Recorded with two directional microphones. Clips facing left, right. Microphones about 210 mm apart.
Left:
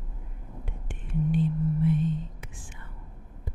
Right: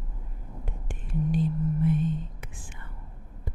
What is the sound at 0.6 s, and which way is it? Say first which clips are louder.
Whispering: right 2 dB; 40° right (ahead or behind).